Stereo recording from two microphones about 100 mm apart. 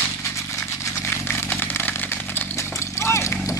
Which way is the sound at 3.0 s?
25° left (ahead or behind).